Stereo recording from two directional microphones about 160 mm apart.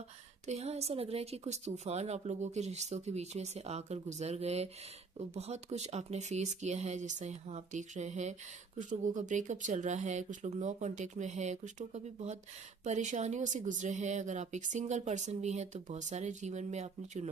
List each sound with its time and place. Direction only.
0.5 s speech: 40° right (ahead or behind)